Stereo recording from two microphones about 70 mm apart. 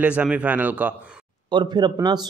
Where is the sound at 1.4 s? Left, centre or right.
Right.